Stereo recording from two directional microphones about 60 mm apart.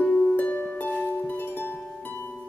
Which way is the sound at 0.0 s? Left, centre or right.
Left.